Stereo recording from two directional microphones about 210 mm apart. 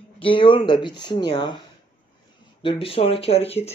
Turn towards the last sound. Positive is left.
turn(degrees=30)  # may be behind; listen again after turning